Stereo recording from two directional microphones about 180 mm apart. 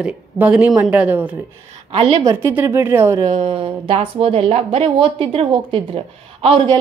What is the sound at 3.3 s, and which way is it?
A woman's voice, 35° right (ahead or behind).